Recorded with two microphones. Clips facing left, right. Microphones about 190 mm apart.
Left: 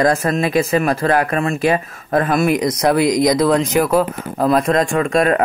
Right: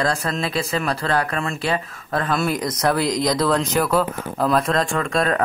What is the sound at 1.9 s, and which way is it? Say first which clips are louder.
Speech: left 7 dB; 45° left (ahead or behind).